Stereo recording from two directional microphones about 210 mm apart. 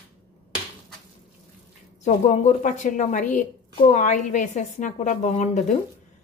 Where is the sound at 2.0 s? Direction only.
35° left (ahead or behind).